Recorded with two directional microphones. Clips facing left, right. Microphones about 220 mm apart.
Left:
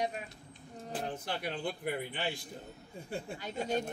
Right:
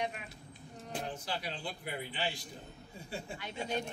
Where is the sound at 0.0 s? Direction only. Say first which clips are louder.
Left 3 dB; 35° left (ahead or behind).